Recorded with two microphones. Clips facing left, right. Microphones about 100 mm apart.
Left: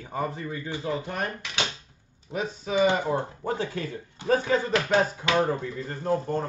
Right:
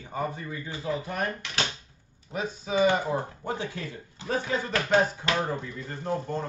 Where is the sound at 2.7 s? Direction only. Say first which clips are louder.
Left 1 dB; 20° left (ahead or behind).